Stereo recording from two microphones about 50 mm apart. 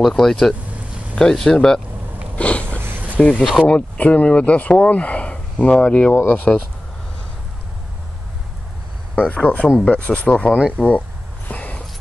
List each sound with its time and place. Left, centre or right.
0.1 s speech: centre
2.3 s sniff: left
3.2 s speech: left
9.1 s speech: left
11.4 s a sound: left